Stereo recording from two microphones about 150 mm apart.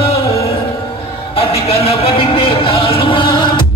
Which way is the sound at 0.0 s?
40° left (ahead or behind).